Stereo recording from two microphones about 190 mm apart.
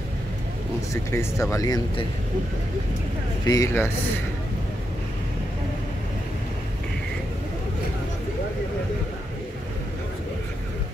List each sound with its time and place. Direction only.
1.1 s speech: 15° left (ahead or behind)
3.4 s speech: 15° left (ahead or behind)